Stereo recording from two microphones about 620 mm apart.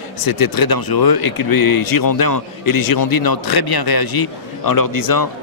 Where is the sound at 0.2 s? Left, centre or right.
Left.